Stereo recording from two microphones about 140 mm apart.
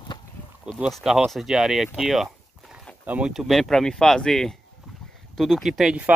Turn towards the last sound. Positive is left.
turn(degrees=-5)  # may be behind; listen again after turning